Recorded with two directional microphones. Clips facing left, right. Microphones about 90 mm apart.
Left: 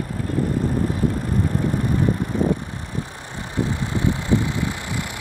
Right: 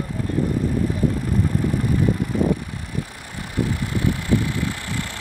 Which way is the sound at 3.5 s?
25° left (ahead or behind).